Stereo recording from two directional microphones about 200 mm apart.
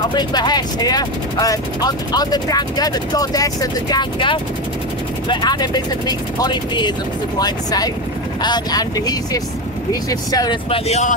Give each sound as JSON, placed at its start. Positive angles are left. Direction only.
{"t": 0.1, "sound": "speech", "side_deg": 20}